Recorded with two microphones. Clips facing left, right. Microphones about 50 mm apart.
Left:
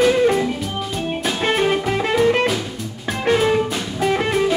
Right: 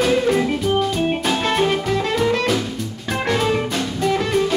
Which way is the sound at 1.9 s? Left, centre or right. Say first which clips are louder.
Left 2 dB; left.